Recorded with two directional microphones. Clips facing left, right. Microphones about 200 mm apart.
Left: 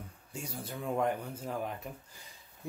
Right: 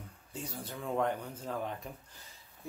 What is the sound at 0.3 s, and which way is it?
Speech, 10° left (ahead or behind).